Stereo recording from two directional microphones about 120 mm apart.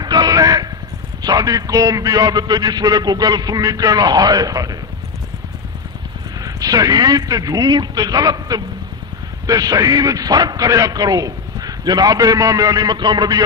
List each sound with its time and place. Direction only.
0.0 s a sound: 35° right (ahead or behind)
1.2 s a man's voice: 30° right (ahead or behind)
6.4 s a man's voice: 30° right (ahead or behind)